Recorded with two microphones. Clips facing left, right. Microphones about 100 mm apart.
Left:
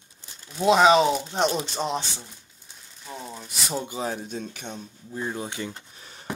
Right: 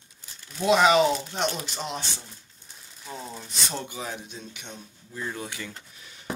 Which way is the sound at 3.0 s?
Centre (ahead or behind).